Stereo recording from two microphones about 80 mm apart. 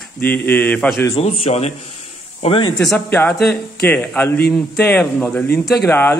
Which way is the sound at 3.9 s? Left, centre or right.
Left.